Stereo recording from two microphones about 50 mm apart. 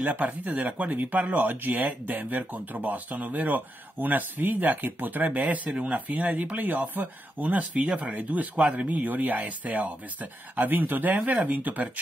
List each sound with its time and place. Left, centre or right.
0.0 s speech: right